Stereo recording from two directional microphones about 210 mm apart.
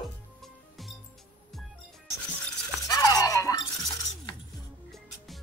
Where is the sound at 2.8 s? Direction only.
20° left (ahead or behind).